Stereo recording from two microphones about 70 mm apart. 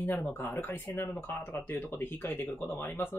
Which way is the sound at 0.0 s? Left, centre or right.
Left.